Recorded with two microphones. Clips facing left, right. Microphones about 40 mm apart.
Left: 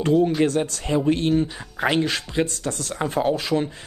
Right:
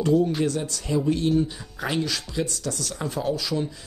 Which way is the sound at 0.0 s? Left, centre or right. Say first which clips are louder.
Left 3 dB; left.